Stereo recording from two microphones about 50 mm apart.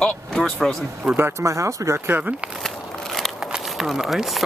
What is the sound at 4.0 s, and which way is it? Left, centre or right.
Speech, centre.